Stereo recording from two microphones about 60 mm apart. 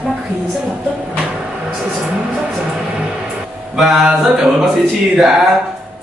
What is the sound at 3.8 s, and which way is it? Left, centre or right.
Music, centre.